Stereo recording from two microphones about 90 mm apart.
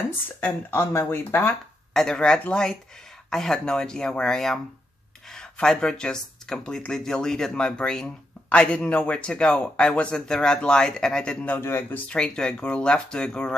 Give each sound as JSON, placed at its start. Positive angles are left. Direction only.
{"t": 0.4, "sound": "speech", "side_deg": 25}
{"t": 2.0, "sound": "speech", "side_deg": 5}
{"t": 11.5, "sound": "speech", "side_deg": 25}
{"t": 12.1, "sound": "speech", "side_deg": 10}